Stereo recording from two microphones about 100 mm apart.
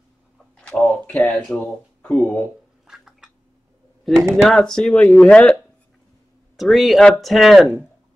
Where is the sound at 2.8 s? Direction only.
5° right (ahead or behind).